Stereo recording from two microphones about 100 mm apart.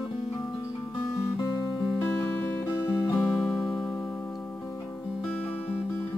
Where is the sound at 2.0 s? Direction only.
20° left (ahead or behind).